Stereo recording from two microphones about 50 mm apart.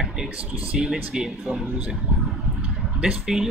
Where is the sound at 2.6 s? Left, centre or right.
Right.